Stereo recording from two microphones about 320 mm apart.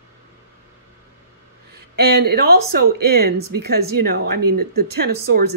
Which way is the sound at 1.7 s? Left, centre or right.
Right.